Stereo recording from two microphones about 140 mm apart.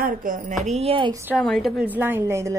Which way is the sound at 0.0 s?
75° right (ahead or behind).